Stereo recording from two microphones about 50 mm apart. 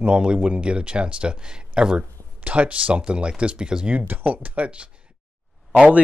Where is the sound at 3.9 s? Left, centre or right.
Right.